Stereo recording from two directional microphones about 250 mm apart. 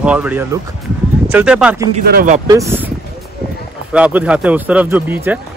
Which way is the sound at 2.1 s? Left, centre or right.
Right.